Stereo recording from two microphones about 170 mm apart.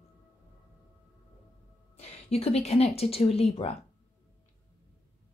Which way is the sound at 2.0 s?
40° left (ahead or behind).